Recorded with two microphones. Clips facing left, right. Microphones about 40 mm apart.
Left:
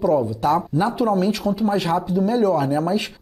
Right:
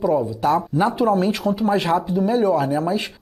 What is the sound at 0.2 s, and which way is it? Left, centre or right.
Speech, centre.